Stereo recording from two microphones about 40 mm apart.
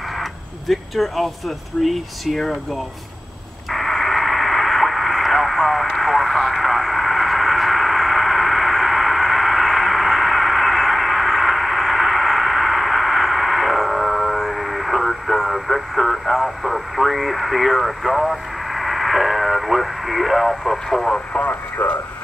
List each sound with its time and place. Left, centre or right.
0.2 s a sound: centre
1.8 s speech: centre
3.7 s radio: centre
21.8 s speech: left